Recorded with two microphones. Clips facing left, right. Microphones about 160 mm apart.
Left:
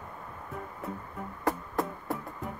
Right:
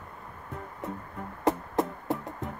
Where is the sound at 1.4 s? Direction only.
20° right (ahead or behind).